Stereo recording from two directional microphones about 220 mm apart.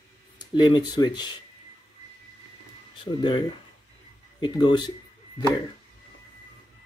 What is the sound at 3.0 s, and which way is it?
Speech, 20° left (ahead or behind).